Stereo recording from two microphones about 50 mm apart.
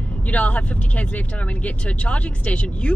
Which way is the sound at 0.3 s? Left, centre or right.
Left.